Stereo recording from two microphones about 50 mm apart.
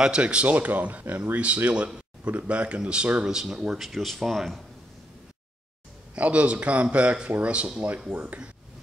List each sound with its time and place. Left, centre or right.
0.0 s speech: centre
3.8 s speech: centre
6.1 s speech: right